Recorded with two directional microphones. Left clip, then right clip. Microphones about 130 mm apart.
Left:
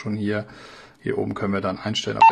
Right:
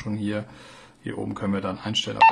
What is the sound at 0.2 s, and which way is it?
Speech, 35° left (ahead or behind).